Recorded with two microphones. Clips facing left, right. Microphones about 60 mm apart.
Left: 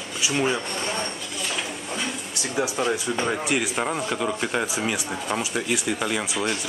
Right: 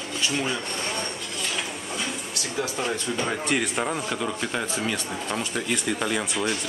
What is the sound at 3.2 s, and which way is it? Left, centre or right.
Speech, centre.